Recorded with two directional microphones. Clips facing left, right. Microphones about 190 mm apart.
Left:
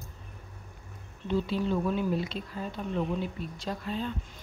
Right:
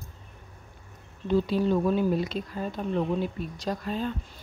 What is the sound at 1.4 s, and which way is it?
A woman's voice, 40° right (ahead or behind).